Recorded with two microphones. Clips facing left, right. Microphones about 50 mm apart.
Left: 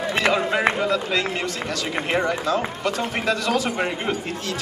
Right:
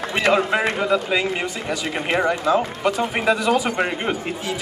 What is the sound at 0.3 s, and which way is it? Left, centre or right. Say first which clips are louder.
Speech: right 4 dB; centre.